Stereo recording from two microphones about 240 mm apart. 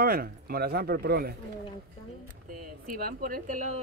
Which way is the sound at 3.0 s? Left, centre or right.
Right.